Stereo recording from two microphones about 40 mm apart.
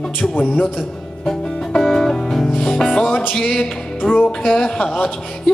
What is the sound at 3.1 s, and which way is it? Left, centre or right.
Music, left.